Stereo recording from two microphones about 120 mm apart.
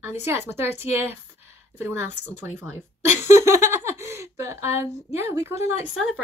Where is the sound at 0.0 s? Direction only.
20° right (ahead or behind).